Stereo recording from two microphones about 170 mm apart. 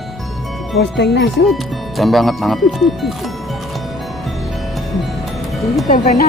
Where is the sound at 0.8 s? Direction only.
90° left.